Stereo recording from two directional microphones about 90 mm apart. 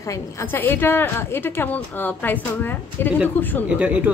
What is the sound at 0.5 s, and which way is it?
A woman's voice, 25° left (ahead or behind).